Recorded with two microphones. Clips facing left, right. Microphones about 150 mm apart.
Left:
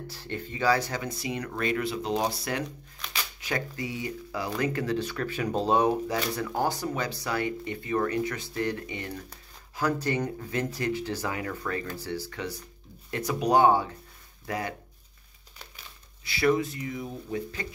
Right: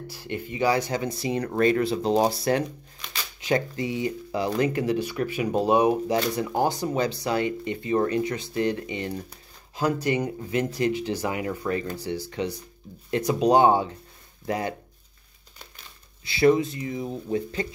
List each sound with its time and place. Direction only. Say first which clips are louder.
0.1 s speech: right 6 dB; 15° right (ahead or behind)
16.3 s speech: right 5 dB; 25° right (ahead or behind)